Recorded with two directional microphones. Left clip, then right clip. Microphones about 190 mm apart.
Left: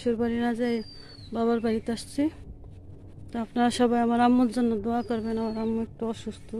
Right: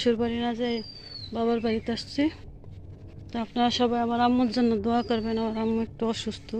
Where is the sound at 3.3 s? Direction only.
25° left (ahead or behind).